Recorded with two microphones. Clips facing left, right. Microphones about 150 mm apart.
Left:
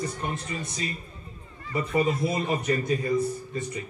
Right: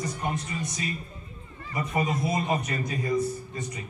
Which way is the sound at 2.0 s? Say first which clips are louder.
Left 1 dB; 30° left (ahead or behind).